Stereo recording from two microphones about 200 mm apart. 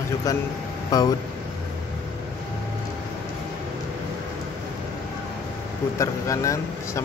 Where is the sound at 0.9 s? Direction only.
20° left (ahead or behind).